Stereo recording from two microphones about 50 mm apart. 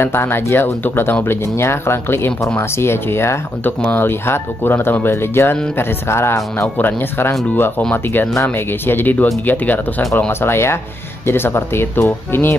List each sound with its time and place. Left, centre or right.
0.0 s speech: left
1.2 s speech: left
3.6 s speech: left
6.8 s speech: left
10.4 s speech: left